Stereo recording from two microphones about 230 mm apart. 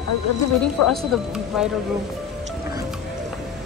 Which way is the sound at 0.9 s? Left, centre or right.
Centre.